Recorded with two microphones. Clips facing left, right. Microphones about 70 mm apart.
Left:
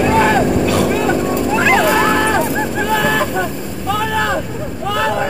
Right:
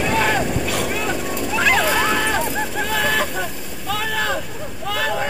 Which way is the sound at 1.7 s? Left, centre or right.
Left.